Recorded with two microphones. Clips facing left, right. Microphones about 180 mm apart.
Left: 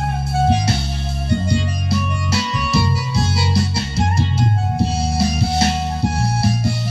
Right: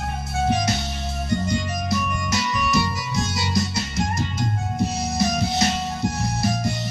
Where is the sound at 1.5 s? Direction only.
30° left (ahead or behind).